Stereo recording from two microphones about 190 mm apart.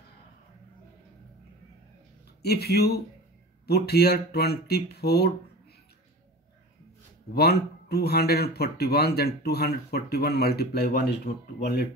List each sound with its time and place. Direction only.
2.4 s speech: 55° left (ahead or behind)
7.3 s speech: 55° left (ahead or behind)